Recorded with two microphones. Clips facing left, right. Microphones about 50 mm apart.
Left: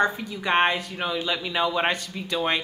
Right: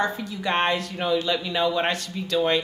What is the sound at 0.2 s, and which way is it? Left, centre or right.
Speech, centre.